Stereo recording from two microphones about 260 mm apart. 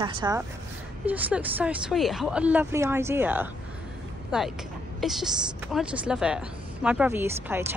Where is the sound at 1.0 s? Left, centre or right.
Centre.